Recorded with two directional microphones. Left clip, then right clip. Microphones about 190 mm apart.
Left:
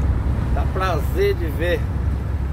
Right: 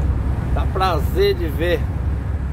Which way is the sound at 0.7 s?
20° right (ahead or behind).